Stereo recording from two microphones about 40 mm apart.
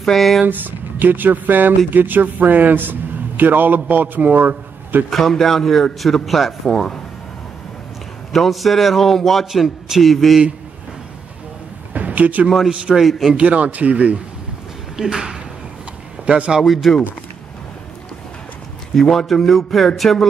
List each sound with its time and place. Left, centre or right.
0.0 s speech: centre
0.5 s a man's voice: right
5.1 s a man's voice: centre
8.3 s a man's voice: centre
9.5 s a man's voice: centre
11.9 s a sound: right
12.9 s a man's voice: centre
13.4 s a man's voice: right
15.0 s a man's voice: centre
16.3 s speech: right
16.6 s a man's voice: centre
18.9 s a man's voice: centre